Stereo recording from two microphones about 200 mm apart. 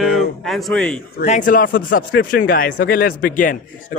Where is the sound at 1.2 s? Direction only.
40° left (ahead or behind).